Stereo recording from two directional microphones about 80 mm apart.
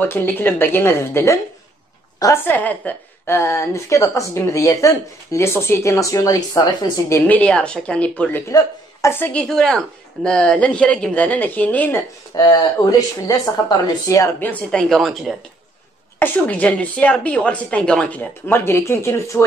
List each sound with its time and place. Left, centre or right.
0.0 s speech: left
2.3 s speech: left
3.3 s speech: left
7.2 s speech: centre
8.5 s a man's voice: left
9.3 s speech: centre
12.4 s speech: left
14.7 s speech: centre
16.2 s speech: left
18.5 s speech: left